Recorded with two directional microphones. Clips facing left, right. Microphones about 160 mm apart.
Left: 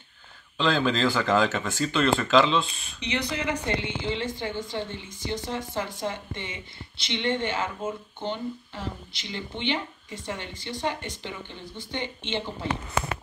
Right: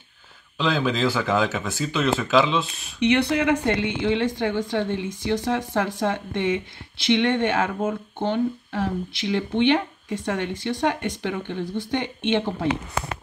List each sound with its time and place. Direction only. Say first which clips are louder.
0.6 s speech: right 1 dB; 5° right (ahead or behind)
3.0 s speech: right 10 dB; 65° right (ahead or behind)